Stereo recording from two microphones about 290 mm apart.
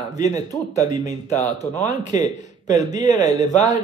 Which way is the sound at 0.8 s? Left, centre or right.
Centre.